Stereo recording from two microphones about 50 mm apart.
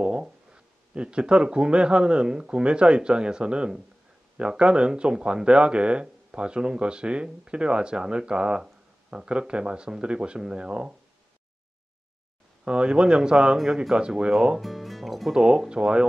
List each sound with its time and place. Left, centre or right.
0.0 s speech: centre
12.6 s speech: right
14.6 s speech: centre
15.3 s speech: centre